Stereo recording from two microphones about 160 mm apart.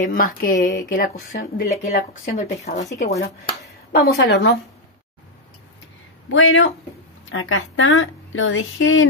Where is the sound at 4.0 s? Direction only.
90° left.